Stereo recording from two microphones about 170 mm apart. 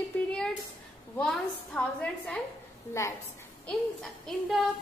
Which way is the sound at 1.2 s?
5° left (ahead or behind).